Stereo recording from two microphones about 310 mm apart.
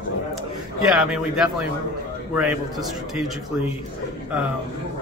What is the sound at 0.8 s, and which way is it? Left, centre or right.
Speech, centre.